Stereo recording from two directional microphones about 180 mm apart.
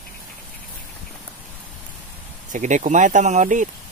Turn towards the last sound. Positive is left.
turn(degrees=-45)  # may be behind; listen again after turning